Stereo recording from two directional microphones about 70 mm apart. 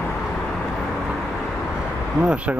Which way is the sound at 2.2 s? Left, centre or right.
Centre.